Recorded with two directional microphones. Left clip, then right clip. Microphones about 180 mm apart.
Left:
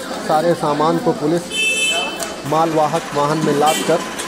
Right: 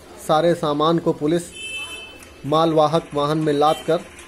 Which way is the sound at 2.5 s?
Centre (ahead or behind).